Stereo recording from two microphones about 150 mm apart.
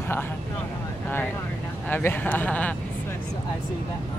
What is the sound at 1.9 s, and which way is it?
Speech, 10° left (ahead or behind).